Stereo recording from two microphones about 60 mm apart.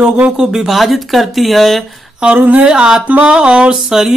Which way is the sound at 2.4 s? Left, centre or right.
Right.